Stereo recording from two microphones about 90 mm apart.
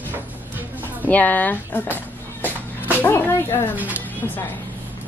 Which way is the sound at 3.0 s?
25° left (ahead or behind).